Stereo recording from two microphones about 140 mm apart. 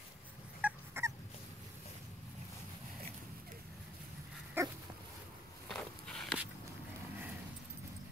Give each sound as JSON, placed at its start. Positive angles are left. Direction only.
{"t": 0.6, "sound": "dog", "side_deg": -10}
{"t": 4.6, "sound": "dog", "side_deg": -15}
{"t": 5.7, "sound": "walk", "side_deg": 5}